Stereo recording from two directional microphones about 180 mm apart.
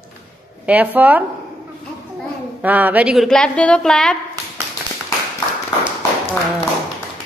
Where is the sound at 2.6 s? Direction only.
10° right (ahead or behind).